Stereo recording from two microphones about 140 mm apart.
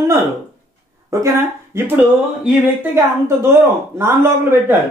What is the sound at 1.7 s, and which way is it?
A man's voice, 15° right (ahead or behind).